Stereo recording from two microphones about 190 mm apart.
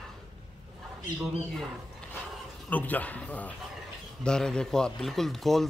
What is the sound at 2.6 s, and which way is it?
A man's voice, 10° left (ahead or behind).